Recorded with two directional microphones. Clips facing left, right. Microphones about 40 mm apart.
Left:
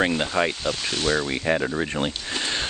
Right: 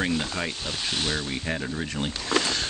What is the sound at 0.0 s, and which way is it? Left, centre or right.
Speech, left.